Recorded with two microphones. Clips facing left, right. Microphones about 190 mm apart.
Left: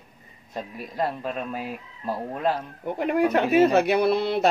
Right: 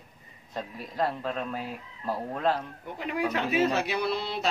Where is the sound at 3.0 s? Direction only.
55° left (ahead or behind).